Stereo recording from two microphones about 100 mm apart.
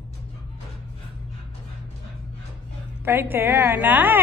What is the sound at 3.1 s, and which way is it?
A woman's voice, 20° right (ahead or behind).